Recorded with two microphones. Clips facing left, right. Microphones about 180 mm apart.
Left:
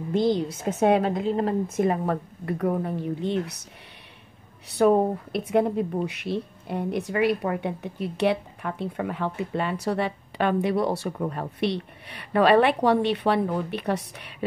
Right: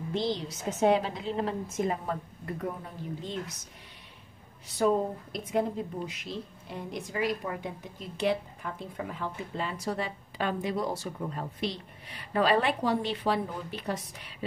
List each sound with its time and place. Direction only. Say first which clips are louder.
0.1 s a woman's voice: left 9 dB; 50° left (ahead or behind); by 3.6 s 65° left (ahead or behind)
4.6 s speech: left 7 dB; 65° left (ahead or behind)